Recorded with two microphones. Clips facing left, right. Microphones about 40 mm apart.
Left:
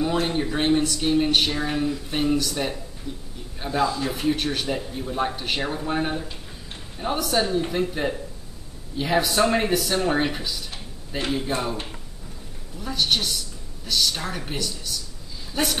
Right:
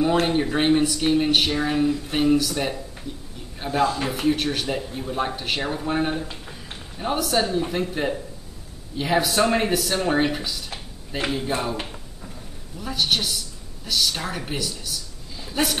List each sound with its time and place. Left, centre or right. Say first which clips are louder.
0.3 s speech: right 2 dB; centre
3.8 s speech: right 1 dB; right
4.1 s speech: right 2 dB; centre
12.7 s a man's voice: even; centre